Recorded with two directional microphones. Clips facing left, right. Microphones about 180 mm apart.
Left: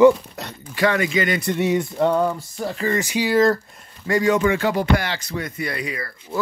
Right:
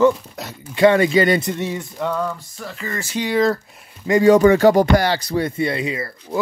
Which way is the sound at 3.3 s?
Centre (ahead or behind).